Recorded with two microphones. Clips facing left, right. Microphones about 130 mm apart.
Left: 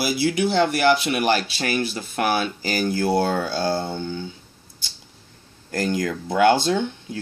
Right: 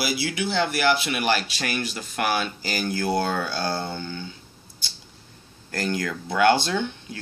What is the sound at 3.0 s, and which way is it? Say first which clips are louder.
Speech: left 3 dB; 25° left (ahead or behind).